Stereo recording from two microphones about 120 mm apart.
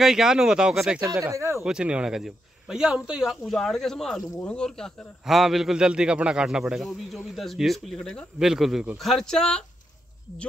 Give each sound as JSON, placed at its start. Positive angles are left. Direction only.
{"t": 0.0, "sound": "a man's voice", "side_deg": -5}
{"t": 1.0, "sound": "speech", "side_deg": -25}
{"t": 1.6, "sound": "a man's voice", "side_deg": -5}